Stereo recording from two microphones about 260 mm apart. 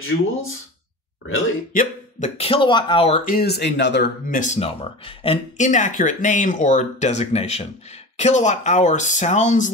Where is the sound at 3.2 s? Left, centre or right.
Left.